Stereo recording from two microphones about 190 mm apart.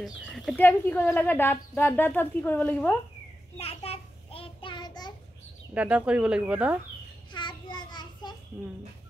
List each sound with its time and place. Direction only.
0.0 s speech: 5° left (ahead or behind)
3.5 s child singing: 30° left (ahead or behind)
5.8 s speech: 5° right (ahead or behind)
7.3 s child singing: 25° left (ahead or behind)